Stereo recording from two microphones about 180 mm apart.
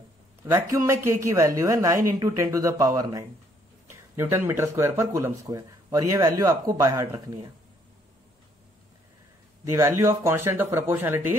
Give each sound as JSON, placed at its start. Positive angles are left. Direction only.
{"t": 0.5, "sound": "a man's voice", "side_deg": -15}
{"t": 9.7, "sound": "a man's voice", "side_deg": -15}